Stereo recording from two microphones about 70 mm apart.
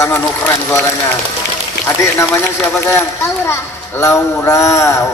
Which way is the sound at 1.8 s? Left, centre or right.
Left.